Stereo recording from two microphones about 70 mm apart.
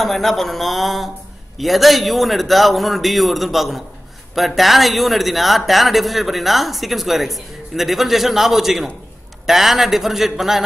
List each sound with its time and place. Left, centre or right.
0.0 s a man's voice: centre